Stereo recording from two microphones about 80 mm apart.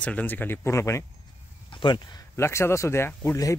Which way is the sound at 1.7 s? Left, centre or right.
Left.